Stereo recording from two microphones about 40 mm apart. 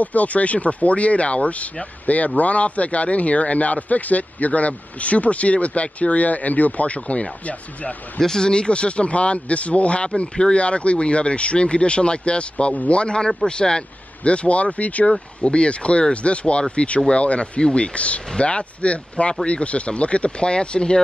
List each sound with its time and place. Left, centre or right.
0.0 s speech: left
8.2 s speech: centre